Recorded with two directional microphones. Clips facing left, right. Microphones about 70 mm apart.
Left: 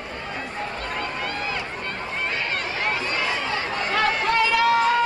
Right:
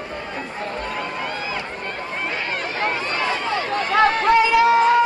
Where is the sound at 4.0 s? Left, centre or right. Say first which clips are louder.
Right 6 dB; right.